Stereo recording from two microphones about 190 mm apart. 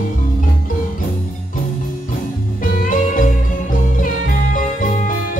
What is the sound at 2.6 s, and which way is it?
Music, 45° left (ahead or behind).